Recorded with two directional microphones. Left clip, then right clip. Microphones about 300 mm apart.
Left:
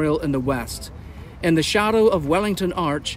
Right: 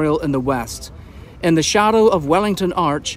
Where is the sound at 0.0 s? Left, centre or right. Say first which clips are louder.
Right 3 dB; centre.